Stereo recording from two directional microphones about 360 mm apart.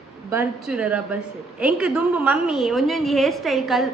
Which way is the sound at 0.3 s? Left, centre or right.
Centre.